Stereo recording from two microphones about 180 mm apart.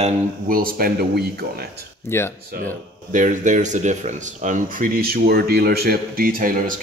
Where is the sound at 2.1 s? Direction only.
15° left (ahead or behind).